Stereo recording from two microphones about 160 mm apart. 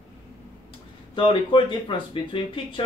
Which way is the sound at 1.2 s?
30° left (ahead or behind).